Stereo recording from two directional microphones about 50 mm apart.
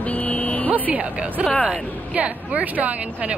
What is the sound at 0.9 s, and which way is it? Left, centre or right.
Speech, right.